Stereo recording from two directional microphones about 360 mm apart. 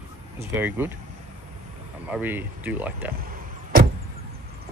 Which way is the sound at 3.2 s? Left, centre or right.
Right.